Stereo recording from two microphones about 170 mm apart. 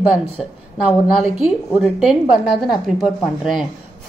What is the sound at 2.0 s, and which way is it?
Speech, 5° right (ahead or behind).